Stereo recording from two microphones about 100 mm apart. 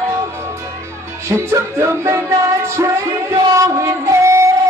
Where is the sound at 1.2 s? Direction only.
25° right (ahead or behind).